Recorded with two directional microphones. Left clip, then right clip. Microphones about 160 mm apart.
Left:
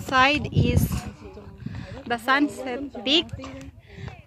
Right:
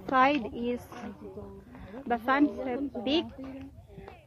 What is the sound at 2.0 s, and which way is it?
Speech, 10° left (ahead or behind).